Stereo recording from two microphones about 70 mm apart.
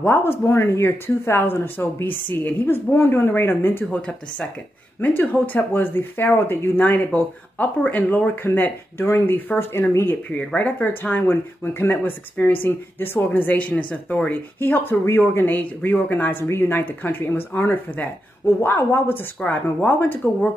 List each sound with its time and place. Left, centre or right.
0.0 s speech: left
5.0 s speech: left
10.3 s speech: left